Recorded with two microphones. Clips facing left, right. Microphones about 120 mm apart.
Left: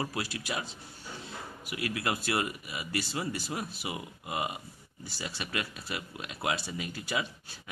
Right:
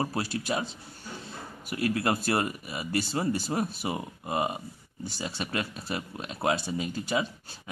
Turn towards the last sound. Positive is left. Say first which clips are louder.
# right 6 dB
turn(degrees=-25)  # may be behind; listen again after turning